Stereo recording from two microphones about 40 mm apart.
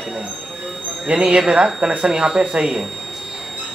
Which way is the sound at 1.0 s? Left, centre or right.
Right.